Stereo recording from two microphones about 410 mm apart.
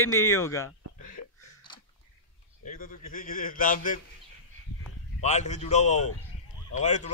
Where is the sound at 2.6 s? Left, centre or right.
Centre.